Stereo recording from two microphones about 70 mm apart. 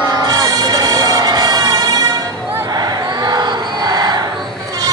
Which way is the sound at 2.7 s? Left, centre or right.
Right.